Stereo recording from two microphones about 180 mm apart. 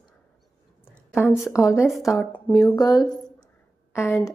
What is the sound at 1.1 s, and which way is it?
A woman's voice, 10° left (ahead or behind).